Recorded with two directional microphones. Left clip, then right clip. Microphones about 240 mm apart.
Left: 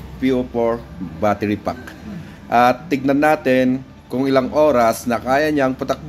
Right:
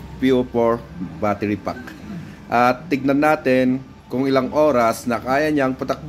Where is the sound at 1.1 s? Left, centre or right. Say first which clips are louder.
Left 3 dB; centre.